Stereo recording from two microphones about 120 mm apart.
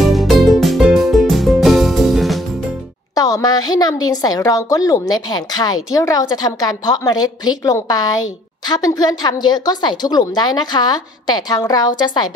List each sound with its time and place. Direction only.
0.0 s music: centre (ahead or behind)
3.2 s a woman's voice: 30° left (ahead or behind)